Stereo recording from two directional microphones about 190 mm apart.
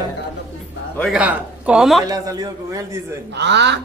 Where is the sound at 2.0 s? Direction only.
20° right (ahead or behind).